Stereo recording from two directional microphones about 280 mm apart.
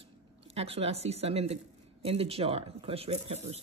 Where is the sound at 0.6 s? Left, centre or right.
Right.